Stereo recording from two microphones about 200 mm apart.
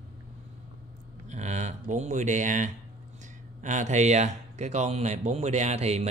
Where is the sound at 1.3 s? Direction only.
35° right (ahead or behind).